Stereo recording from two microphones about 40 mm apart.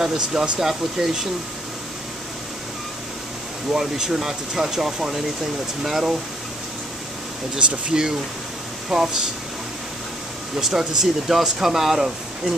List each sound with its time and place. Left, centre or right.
0.0 s speech: centre
3.7 s speech: centre
7.9 s speech: right
10.5 s speech: centre